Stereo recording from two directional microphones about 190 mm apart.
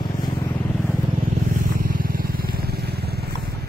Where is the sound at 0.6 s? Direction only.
10° left (ahead or behind).